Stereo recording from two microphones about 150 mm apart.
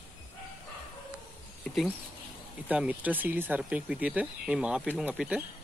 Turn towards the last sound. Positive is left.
turn(degrees=-10)  # may be behind; listen again after turning